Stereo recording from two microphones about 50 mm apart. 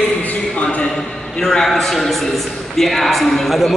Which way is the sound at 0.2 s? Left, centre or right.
Left.